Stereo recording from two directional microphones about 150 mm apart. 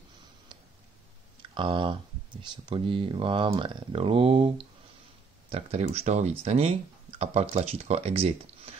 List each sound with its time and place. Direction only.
1.5 s speech: 35° right (ahead or behind)